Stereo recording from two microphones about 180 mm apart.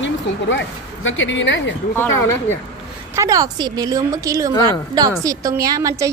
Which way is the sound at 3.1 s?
20° right (ahead or behind).